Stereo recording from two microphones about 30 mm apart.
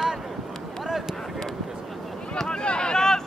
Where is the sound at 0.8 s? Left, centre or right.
Centre.